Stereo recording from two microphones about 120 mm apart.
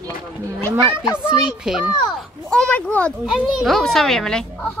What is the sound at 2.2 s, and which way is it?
Speech, 5° left (ahead or behind).